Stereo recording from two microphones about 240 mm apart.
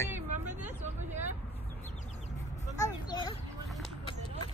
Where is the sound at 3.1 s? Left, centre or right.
Centre.